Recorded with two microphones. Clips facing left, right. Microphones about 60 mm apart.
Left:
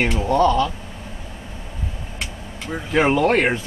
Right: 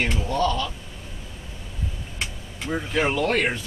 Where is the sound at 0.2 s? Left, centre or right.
Left.